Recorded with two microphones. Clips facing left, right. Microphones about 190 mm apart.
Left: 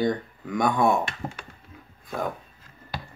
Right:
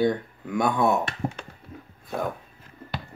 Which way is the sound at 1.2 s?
65° right (ahead or behind).